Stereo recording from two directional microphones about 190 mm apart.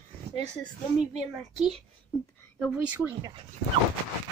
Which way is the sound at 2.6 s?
5° right (ahead or behind).